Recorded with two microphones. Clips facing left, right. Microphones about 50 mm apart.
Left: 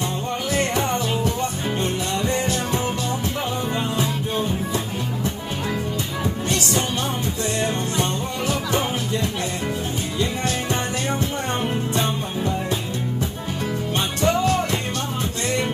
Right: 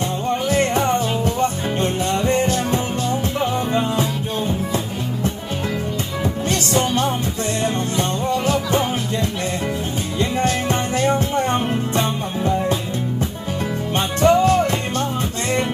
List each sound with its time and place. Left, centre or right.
0.5 s music: right
6.5 s music: right
10.1 s music: right
13.9 s music: right